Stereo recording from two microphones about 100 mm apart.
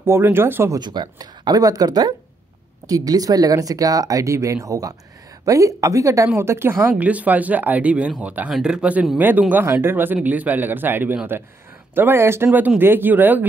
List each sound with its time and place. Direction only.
0.0 s a woman's voice: 20° right (ahead or behind)
0.7 s a woman's voice: 50° right (ahead or behind); by 13.5 s 20° right (ahead or behind)